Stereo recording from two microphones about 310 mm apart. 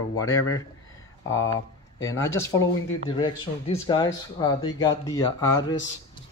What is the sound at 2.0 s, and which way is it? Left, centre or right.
Speech, centre.